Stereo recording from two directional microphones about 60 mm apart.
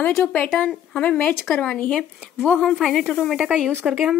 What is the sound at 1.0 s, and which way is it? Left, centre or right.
Speech, left.